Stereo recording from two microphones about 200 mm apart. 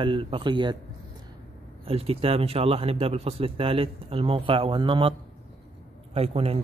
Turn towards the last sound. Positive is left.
turn(degrees=-30)  # may be behind; listen again after turning